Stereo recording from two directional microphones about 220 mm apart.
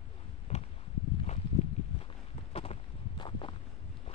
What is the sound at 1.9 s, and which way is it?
Walk, 25° left (ahead or behind).